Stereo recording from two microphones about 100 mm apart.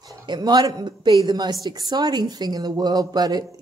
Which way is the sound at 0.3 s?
45° right (ahead or behind).